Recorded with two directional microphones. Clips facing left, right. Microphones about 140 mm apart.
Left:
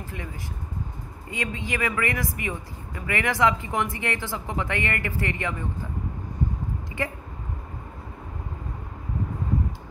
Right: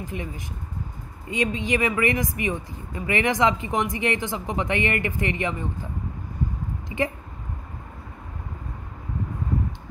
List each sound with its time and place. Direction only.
0.0 s speech: 20° right (ahead or behind)
1.3 s speech: 20° right (ahead or behind)
7.0 s speech: 20° right (ahead or behind)